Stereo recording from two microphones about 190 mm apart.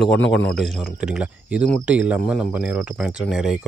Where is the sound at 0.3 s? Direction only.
5° left (ahead or behind).